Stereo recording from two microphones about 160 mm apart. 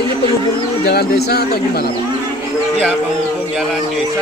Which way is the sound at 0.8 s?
75° left (ahead or behind).